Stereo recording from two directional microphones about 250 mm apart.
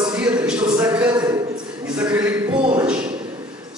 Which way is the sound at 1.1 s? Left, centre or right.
Centre.